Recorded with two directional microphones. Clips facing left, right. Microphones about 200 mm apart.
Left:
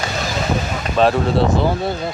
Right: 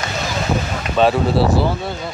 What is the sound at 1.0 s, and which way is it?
Speech, centre (ahead or behind).